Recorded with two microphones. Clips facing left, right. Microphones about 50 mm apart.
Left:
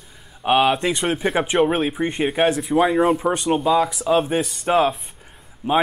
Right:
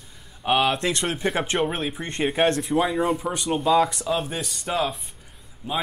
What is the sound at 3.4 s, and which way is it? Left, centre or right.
Speech, centre.